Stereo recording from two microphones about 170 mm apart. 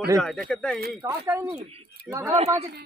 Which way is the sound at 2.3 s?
35° right (ahead or behind).